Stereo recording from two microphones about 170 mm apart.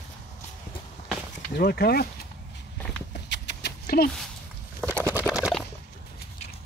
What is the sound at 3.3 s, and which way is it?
Rodents, 80° left.